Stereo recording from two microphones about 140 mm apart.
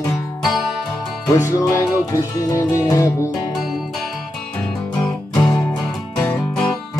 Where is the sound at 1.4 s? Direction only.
25° left (ahead or behind).